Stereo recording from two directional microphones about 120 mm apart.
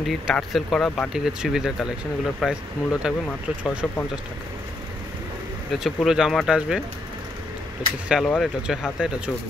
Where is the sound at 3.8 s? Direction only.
5° left (ahead or behind).